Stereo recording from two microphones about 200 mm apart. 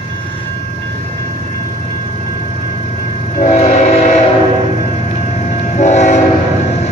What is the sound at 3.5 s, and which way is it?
Train, 35° left (ahead or behind).